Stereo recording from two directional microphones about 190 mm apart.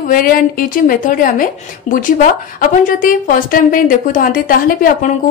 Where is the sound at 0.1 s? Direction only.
45° left (ahead or behind).